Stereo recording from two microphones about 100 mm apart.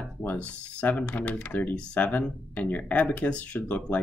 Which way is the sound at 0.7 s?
15° left (ahead or behind).